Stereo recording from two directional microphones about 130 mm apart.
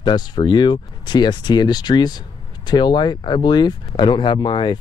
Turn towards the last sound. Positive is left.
turn(degrees=35)  # may be behind; listen again after turning